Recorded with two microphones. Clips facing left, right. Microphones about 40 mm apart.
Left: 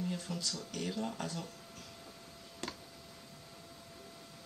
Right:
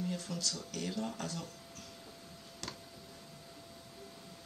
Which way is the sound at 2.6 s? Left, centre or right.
Left.